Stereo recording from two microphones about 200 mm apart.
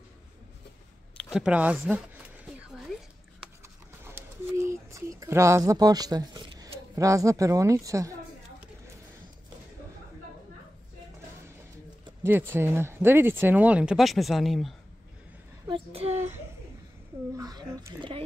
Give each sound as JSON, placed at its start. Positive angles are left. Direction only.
{"t": 1.1, "sound": "a sound", "side_deg": -5}
{"t": 4.0, "sound": "a sound", "side_deg": -15}
{"t": 5.2, "sound": "speech", "side_deg": -15}
{"t": 12.2, "sound": "speech", "side_deg": -10}
{"t": 15.6, "sound": "a child's voice", "side_deg": -25}
{"t": 17.4, "sound": "speech", "side_deg": -20}